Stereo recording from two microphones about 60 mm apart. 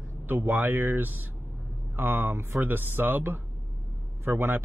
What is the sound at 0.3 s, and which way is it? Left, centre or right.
Speech, right.